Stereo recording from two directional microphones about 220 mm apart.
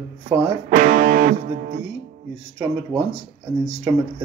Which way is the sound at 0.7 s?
35° right (ahead or behind).